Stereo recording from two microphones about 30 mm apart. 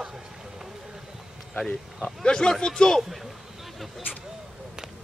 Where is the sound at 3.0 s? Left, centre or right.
Centre.